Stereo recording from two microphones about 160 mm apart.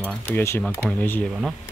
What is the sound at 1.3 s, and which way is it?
Speech, centre (ahead or behind).